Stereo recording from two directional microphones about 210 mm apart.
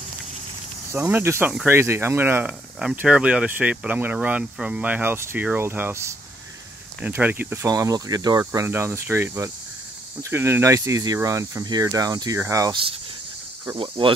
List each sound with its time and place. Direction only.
0.9 s speech: 10° right (ahead or behind)
13.7 s speech: 25° right (ahead or behind)